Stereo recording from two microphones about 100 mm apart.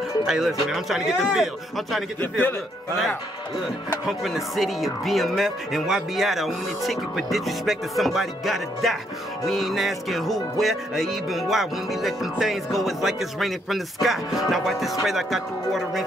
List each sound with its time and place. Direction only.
0.3 s speech: 5° right (ahead or behind)
2.1 s a man's voice: 15° left (ahead or behind)
4.1 s speech: centre (ahead or behind)